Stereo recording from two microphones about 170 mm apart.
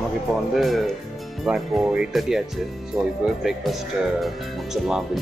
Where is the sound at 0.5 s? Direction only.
Centre (ahead or behind).